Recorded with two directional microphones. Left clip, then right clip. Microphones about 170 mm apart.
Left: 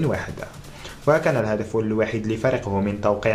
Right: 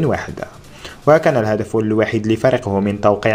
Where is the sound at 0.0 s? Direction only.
35° right (ahead or behind).